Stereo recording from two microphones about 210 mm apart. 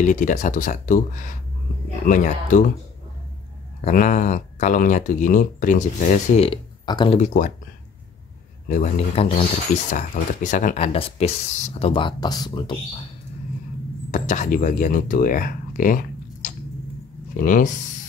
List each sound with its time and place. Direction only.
0.0 s speech: 35° left (ahead or behind)
3.8 s speech: 40° left (ahead or behind); by 7.2 s 25° left (ahead or behind)
7.2 s speech: 40° left (ahead or behind)
8.6 s speech: 30° left (ahead or behind)
14.1 s speech: 35° left (ahead or behind)